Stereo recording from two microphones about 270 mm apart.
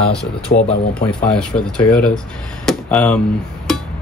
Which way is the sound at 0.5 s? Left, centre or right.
Left.